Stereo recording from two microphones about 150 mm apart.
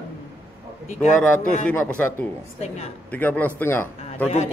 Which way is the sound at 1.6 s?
10° left (ahead or behind).